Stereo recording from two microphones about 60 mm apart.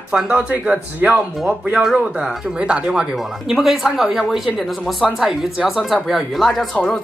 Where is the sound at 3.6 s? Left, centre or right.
Centre.